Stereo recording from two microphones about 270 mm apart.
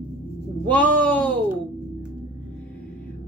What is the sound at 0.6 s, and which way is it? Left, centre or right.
Speech, centre.